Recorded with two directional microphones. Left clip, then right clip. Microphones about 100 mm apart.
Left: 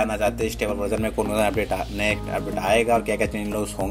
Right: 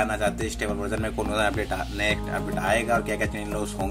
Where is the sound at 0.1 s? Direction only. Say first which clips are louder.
Left 3 dB; 15° left (ahead or behind).